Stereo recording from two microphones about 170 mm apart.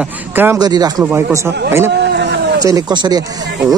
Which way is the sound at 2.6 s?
20° right (ahead or behind).